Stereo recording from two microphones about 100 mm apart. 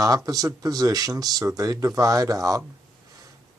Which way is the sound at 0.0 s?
35° right (ahead or behind).